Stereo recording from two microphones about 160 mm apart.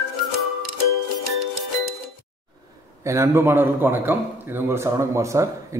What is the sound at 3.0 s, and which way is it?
A man's voice, 15° right (ahead or behind).